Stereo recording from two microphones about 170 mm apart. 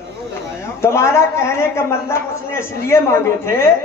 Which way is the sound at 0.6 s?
15° left (ahead or behind).